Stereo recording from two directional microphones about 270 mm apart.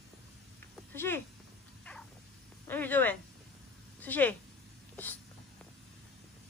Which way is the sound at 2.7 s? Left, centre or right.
Centre.